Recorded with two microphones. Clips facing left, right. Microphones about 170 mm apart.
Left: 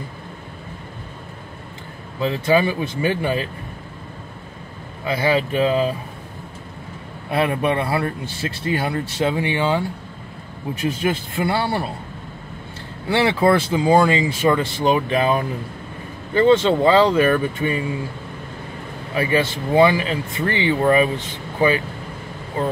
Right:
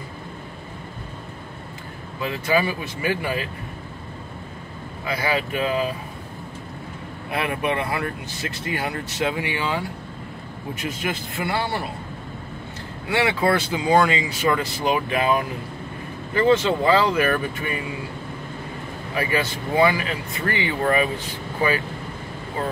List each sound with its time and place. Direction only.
2.2 s speech: 25° left (ahead or behind)
5.0 s speech: 25° left (ahead or behind)
7.3 s a man's voice: 30° left (ahead or behind)
13.1 s speech: 30° left (ahead or behind)
19.1 s speech: 25° left (ahead or behind)